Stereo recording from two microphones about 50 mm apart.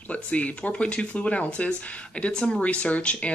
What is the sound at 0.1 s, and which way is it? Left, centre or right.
Speech, left.